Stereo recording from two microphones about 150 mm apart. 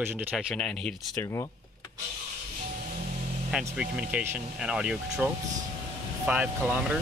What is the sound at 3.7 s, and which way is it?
Speech, 5° right (ahead or behind).